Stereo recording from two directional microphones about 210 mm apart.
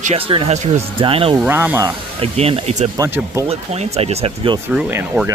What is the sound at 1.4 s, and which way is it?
Speech, 10° right (ahead or behind).